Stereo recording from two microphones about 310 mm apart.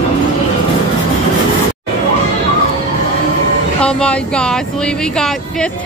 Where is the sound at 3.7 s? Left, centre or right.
Centre.